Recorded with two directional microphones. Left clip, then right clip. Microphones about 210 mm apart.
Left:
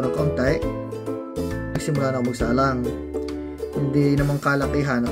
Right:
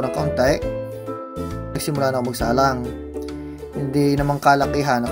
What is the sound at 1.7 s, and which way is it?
Speech, 5° right (ahead or behind).